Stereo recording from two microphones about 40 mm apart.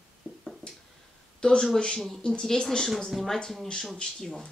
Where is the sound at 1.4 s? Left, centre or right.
Left.